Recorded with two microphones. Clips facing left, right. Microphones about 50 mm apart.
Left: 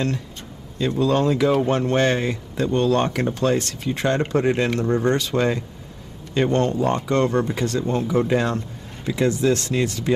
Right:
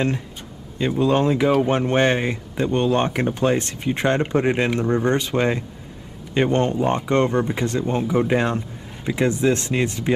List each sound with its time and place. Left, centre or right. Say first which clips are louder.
0.7 s a man's voice: right 1 dB; right